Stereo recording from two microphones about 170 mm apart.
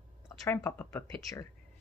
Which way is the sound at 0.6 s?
15° left (ahead or behind).